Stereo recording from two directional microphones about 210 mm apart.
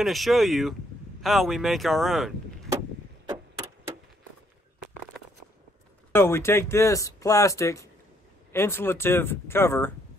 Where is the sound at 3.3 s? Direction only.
15° right (ahead or behind).